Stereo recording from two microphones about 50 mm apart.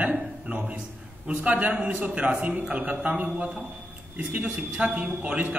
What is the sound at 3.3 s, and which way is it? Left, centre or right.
A man's voice, right.